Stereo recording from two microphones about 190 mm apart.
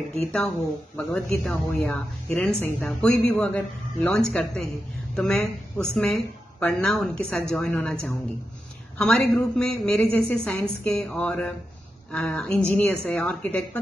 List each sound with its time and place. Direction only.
0.1 s a woman's voice: 5° left (ahead or behind)